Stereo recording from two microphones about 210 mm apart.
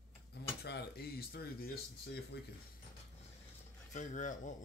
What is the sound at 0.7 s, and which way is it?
Speech, 50° left (ahead or behind).